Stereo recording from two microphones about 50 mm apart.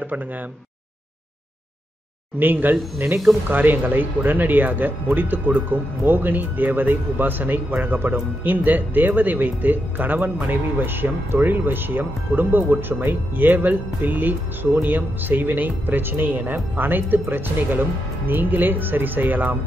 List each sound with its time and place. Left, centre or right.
2.3 s speech: right